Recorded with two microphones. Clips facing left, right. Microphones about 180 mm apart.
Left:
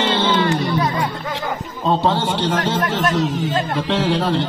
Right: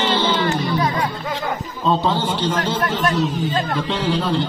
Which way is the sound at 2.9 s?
85° left.